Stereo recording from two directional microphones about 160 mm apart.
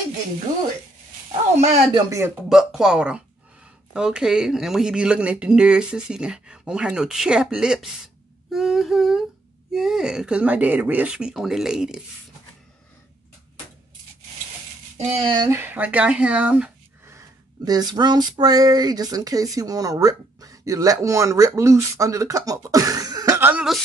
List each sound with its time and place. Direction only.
2.0 s speech: 20° right (ahead or behind)
2.5 s speech: 5° right (ahead or behind)
15.0 s speech: 35° right (ahead or behind)
15.5 s speech: 10° right (ahead or behind)
17.6 s speech: 25° right (ahead or behind)
23.5 s speech: centre (ahead or behind)